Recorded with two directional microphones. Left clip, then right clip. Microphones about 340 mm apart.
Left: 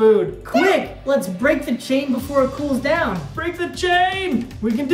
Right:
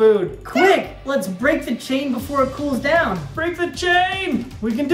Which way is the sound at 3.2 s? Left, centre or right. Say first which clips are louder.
Right 2 dB; centre.